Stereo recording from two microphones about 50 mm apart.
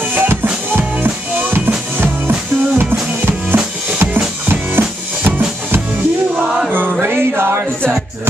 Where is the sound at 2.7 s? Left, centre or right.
Right.